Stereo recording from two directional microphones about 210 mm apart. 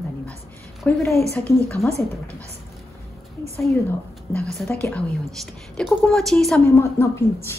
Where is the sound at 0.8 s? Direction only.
10° left (ahead or behind).